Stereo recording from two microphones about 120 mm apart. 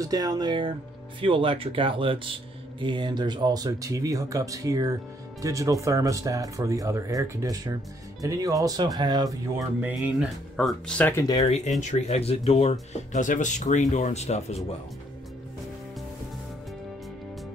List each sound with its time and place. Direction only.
0.0 s speech: 30° right (ahead or behind)
9.8 s speech: 15° right (ahead or behind)
10.5 s speech: 5° left (ahead or behind)
11.0 s speech: 15° left (ahead or behind)
11.4 s speech: 65° left (ahead or behind)
12.9 s speech: 90° left; by 14.6 s 65° left (ahead or behind)